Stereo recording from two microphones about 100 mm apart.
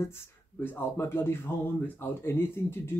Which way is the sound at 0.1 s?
25° left (ahead or behind).